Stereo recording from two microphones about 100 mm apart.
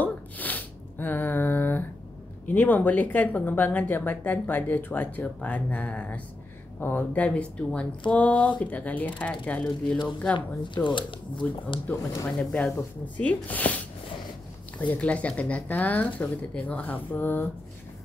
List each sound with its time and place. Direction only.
0.0 s a sound: 15° left (ahead or behind)
2.4 s speech: 20° left (ahead or behind)
10.3 s speech: 50° left (ahead or behind)
11.9 s speech: 35° left (ahead or behind)
13.0 s speech: 15° left (ahead or behind)
14.9 s speech: 15° left (ahead or behind)